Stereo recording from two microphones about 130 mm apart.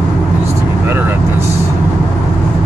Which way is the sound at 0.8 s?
15° right (ahead or behind).